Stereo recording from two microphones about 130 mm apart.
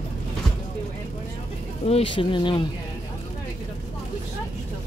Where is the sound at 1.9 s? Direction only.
45° left (ahead or behind).